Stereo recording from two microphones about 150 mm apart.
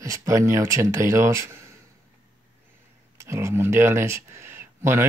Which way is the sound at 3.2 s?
20° right (ahead or behind).